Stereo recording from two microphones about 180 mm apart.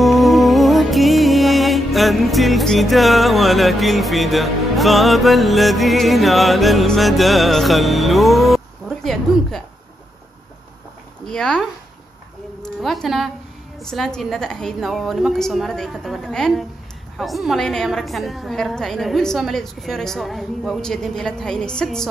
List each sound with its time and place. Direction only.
0.0 s music: centre (ahead or behind)
11.2 s a woman's voice: 5° left (ahead or behind)
12.8 s a woman's voice: centre (ahead or behind)